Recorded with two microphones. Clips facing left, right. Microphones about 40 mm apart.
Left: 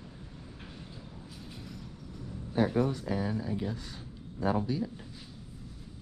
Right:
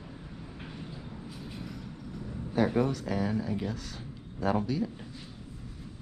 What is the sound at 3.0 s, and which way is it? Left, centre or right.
Speech, right.